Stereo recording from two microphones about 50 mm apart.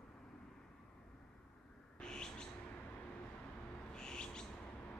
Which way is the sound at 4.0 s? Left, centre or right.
Centre.